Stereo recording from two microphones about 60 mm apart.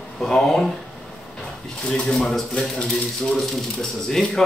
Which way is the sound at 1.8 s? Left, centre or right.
Centre.